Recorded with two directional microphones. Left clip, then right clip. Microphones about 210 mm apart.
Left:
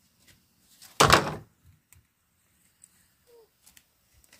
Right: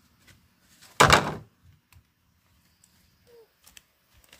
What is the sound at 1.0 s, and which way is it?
Door, 25° right (ahead or behind).